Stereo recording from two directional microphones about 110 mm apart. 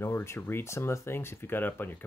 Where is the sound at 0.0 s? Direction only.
25° left (ahead or behind).